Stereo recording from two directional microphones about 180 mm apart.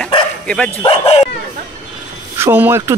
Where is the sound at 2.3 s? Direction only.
10° right (ahead or behind).